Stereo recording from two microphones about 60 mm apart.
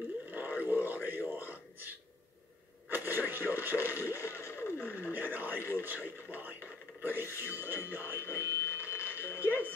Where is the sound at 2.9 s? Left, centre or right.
Right.